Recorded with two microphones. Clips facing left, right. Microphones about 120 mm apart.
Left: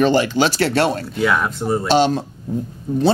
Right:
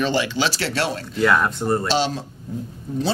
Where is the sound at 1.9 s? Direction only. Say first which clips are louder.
Left 6 dB; 50° left (ahead or behind).